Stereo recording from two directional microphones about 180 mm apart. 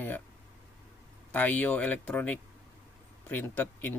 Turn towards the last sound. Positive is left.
turn(degrees=10)  # may be behind; listen again after turning